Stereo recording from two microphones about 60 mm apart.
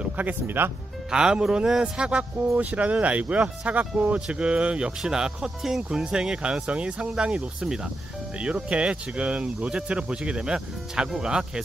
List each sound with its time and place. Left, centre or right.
0.0 s speech: right
1.1 s speech: centre